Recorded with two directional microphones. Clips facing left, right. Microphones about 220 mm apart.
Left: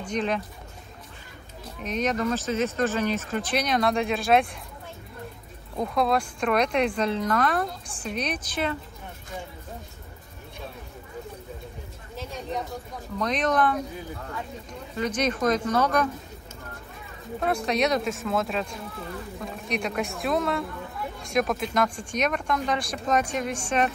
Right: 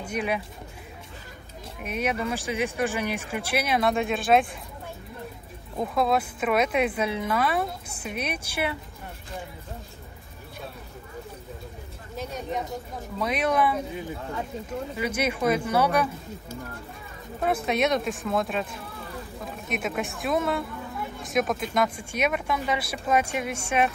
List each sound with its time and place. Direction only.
0.0 s speech: 10° right (ahead or behind)
1.8 s speech: 10° right (ahead or behind)
5.8 s speech: centre (ahead or behind)
12.2 s a sound: 20° right (ahead or behind)
13.2 s speech: 10° right (ahead or behind)
15.0 s speech: 10° right (ahead or behind)
17.4 s speech: 5° right (ahead or behind)